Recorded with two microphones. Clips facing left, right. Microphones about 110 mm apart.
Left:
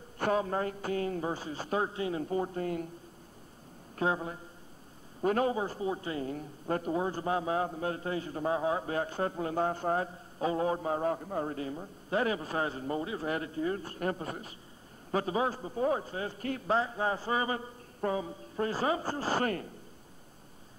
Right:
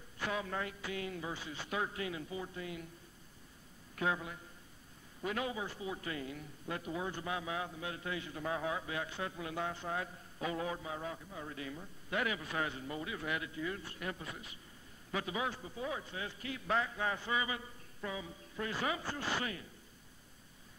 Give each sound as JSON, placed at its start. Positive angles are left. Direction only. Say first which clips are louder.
{"t": 0.2, "sound": "a man's voice", "louder": "left 9 dB", "side_deg": 40}
{"t": 2.2, "sound": "speech", "louder": "left 10 dB", "side_deg": 45}
{"t": 3.9, "sound": "a man's voice", "louder": "left 5 dB", "side_deg": 35}
{"t": 11.5, "sound": "a man's voice", "louder": "left 7 dB", "side_deg": 35}